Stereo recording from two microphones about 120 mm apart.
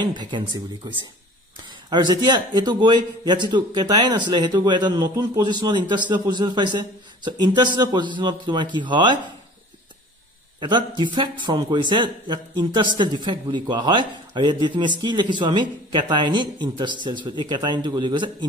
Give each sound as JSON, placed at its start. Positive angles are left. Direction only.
{"t": 0.0, "sound": "a man's voice", "side_deg": -40}
{"t": 10.6, "sound": "a man's voice", "side_deg": -40}